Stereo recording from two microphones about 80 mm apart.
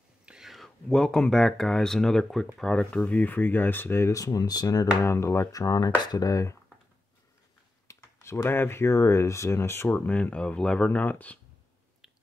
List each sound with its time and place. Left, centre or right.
0.2 s whispering: centre
1.3 s speech: centre; by 4.1 s left
4.1 s speech: left
5.0 s speech: left
7.9 s speech: left
9.8 s speech: left